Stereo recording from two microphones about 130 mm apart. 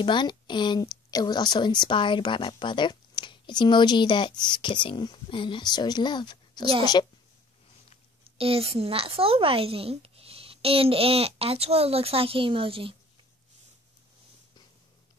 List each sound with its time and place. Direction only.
0.0 s a woman's voice: 35° left (ahead or behind)
8.2 s a woman's voice: 45° right (ahead or behind)